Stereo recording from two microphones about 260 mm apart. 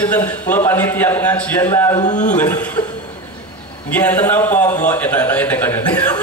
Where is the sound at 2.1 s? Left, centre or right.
Left.